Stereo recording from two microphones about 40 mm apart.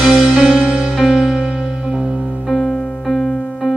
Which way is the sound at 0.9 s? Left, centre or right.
Centre.